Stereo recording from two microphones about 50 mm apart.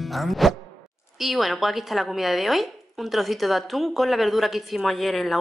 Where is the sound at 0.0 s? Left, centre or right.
Centre.